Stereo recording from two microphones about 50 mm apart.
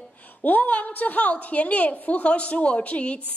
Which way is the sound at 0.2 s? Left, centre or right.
Left.